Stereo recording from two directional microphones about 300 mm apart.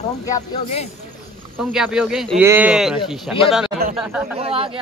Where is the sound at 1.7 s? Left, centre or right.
Centre.